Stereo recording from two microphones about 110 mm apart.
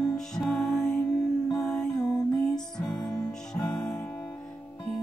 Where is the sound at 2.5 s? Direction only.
40° left (ahead or behind).